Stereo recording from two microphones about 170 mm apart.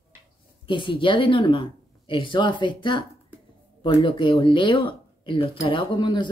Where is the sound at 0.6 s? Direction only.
30° left (ahead or behind).